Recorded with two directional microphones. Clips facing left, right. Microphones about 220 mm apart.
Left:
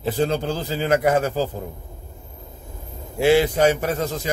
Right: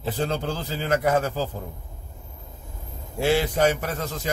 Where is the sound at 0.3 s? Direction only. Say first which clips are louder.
Left 4 dB; 15° left (ahead or behind).